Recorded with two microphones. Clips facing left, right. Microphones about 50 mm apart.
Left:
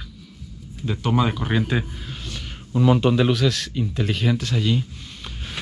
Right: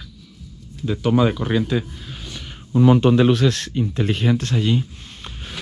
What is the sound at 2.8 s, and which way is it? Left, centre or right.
Speech, right.